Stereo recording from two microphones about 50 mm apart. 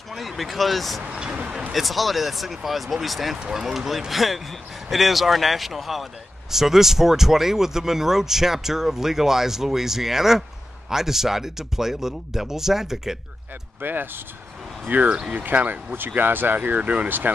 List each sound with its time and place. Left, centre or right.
0.1 s speech: centre
1.0 s speech: right
1.7 s speech: centre
3.3 s speech: centre
13.7 s speech: right
14.9 s speech: right
15.3 s speech: right
16.5 s speech: right